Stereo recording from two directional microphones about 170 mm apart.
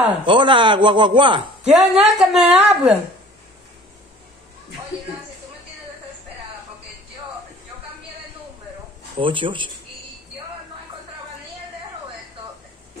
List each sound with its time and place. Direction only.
0.2 s speech: 30° right (ahead or behind)
1.7 s a woman's voice: 5° right (ahead or behind)
9.2 s speech: 30° right (ahead or behind)